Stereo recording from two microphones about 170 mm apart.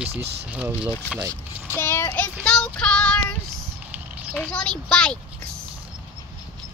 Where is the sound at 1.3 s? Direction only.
15° left (ahead or behind).